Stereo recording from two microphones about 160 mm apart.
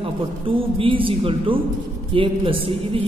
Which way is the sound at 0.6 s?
35° right (ahead or behind).